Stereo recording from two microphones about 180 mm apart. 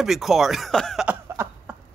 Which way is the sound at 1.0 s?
15° right (ahead or behind).